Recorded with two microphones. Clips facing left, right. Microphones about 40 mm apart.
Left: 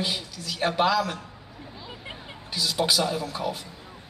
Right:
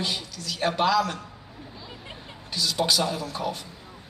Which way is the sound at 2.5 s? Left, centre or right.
Centre.